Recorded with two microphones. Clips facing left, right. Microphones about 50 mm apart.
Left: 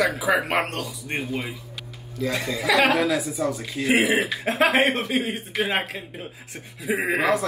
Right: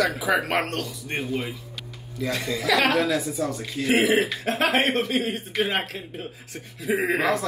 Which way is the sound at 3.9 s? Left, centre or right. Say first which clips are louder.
Even; centre.